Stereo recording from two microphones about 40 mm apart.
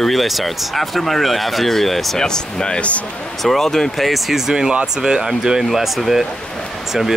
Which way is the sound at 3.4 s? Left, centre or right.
Centre.